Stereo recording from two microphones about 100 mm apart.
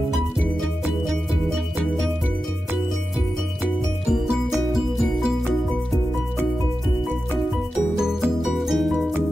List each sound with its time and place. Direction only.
4.7 s music: 5° right (ahead or behind)
8.5 s music: centre (ahead or behind)